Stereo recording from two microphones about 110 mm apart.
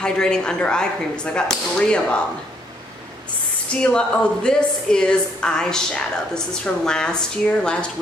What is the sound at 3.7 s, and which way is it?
A woman's voice, 10° left (ahead or behind).